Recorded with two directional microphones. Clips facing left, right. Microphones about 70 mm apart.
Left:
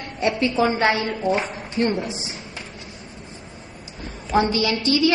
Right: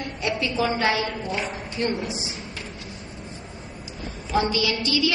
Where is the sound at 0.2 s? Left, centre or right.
Left.